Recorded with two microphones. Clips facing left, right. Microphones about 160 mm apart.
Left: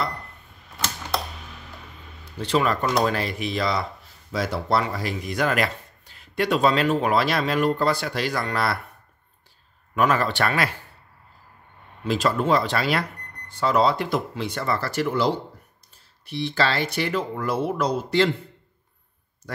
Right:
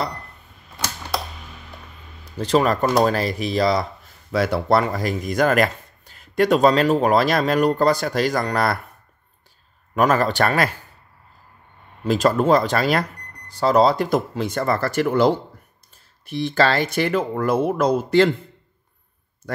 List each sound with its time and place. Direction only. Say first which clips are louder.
0.7 s typewriter: right 1 dB; 10° right (ahead or behind)
2.2 s speech: right 4 dB; 40° right (ahead or behind)
4.3 s speech: right 5 dB; 65° right (ahead or behind); by 8.7 s 45° right (ahead or behind)
9.9 s speech: right 4 dB; 40° right (ahead or behind)
12.0 s speech: right 5 dB; 45° right (ahead or behind)
19.4 s speech: right 6 dB; 50° right (ahead or behind)